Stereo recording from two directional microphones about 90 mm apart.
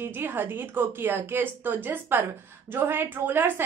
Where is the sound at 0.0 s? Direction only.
25° right (ahead or behind).